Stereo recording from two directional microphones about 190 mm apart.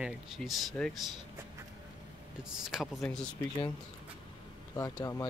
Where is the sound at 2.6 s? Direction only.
Centre (ahead or behind).